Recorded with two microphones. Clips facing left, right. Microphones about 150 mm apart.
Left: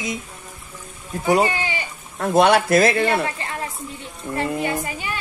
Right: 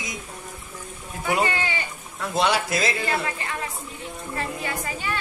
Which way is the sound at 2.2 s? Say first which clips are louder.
Left 7 dB; 55° left (ahead or behind).